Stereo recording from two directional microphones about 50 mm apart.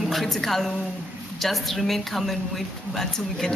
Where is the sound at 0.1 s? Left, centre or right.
Centre.